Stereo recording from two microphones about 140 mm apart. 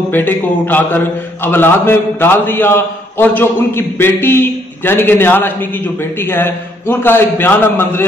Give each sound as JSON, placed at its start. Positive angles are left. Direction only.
{"t": 0.1, "sound": "a man's voice", "side_deg": 15}